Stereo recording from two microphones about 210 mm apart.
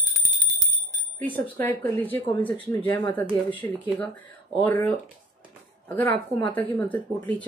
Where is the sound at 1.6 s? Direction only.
10° left (ahead or behind).